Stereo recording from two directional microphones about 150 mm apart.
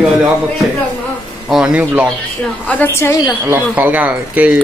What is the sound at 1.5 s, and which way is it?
Speech, 5° right (ahead or behind).